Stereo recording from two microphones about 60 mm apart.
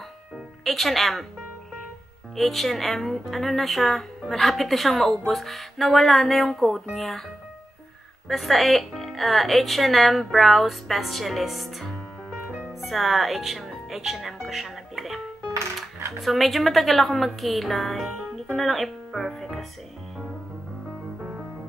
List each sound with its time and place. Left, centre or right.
0.7 s speech: centre
2.3 s speech: centre
8.3 s speech: centre